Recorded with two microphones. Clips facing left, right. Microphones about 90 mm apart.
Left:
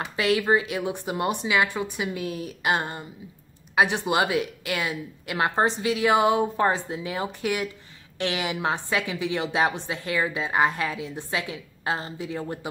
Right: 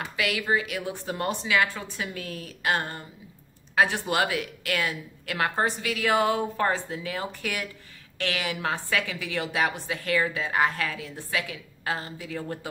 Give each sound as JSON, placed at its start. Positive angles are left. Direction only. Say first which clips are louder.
{"t": 0.0, "sound": "a woman's voice", "louder": "left 5 dB", "side_deg": 30}